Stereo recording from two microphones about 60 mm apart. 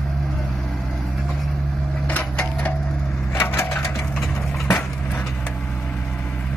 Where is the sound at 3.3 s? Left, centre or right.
Left.